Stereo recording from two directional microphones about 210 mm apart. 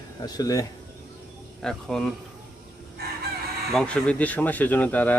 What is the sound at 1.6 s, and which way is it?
Speech, centre (ahead or behind).